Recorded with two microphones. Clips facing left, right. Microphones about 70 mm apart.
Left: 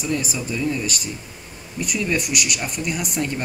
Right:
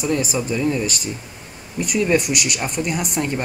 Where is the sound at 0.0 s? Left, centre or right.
Centre.